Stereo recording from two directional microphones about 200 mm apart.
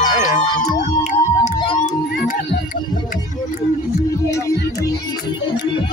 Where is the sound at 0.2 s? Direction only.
35° left (ahead or behind).